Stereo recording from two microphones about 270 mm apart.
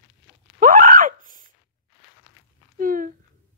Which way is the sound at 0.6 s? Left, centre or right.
Right.